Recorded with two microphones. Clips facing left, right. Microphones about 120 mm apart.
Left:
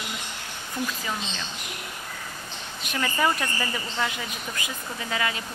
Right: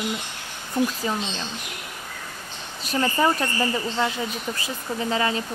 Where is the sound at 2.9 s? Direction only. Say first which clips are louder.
Right 4 dB; 25° right (ahead or behind).